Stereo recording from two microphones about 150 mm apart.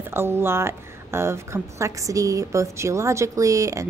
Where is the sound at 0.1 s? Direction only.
15° right (ahead or behind).